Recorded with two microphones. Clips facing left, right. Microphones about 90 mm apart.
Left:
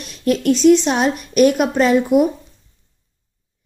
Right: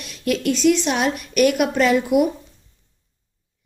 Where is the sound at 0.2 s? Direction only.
35° left (ahead or behind).